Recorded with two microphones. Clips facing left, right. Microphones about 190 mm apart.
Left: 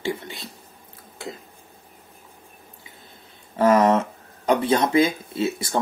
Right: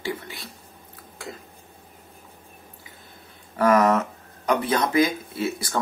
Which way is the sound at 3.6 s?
25° left (ahead or behind).